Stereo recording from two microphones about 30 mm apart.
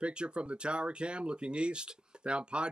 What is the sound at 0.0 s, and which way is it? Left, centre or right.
Speech, right.